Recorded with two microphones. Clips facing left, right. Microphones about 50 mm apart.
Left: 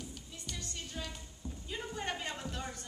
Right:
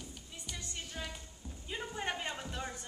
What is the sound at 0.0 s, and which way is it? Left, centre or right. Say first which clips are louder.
Music: left 2 dB; centre.